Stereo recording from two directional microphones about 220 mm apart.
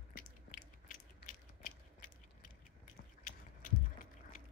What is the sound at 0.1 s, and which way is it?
Biting, 35° left (ahead or behind).